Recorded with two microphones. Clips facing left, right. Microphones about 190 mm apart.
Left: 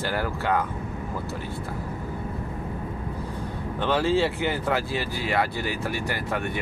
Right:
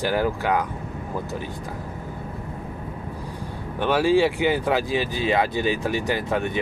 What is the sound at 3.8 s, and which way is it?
Speech, 10° right (ahead or behind).